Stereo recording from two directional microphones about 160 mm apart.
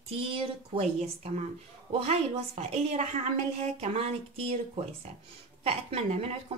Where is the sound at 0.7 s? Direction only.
40° right (ahead or behind).